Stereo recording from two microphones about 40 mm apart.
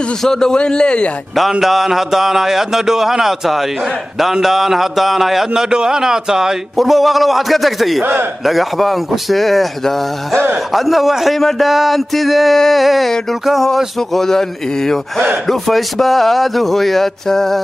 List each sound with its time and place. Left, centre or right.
0.2 s a man's voice: centre
1.6 s speech: centre
6.8 s a man's voice: centre
8.0 s a man's voice: right
8.5 s a man's voice: centre
12.5 s a man's voice: centre
12.8 s a man's voice: centre